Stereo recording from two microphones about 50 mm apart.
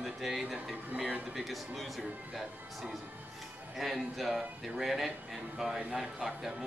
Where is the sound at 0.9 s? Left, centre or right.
Right.